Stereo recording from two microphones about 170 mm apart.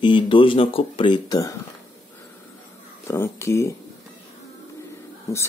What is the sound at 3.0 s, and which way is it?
Speech, 15° left (ahead or behind).